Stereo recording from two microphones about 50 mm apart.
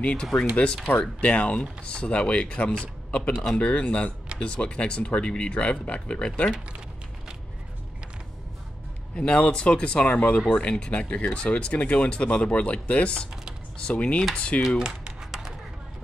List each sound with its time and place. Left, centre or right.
0.0 s speech: centre
0.9 s speech: left
9.1 s speech: left
14.8 s speech: centre